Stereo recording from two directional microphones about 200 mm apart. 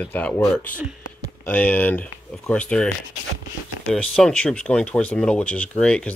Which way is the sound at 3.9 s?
5° left (ahead or behind).